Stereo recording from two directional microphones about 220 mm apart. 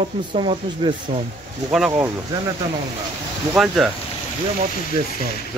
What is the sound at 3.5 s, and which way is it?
Speech, centre (ahead or behind).